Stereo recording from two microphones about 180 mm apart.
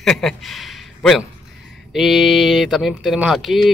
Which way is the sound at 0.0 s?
5° left (ahead or behind).